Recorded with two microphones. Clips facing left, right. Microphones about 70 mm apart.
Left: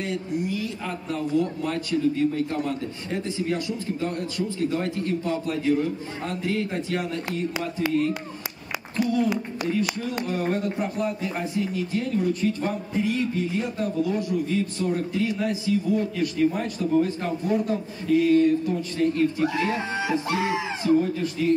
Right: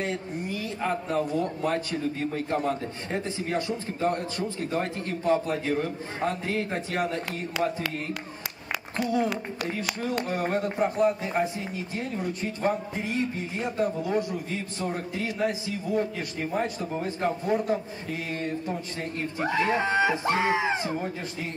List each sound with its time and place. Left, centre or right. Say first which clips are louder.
0.0 s speech: left 3 dB; right
10.2 s speech: left 4 dB; right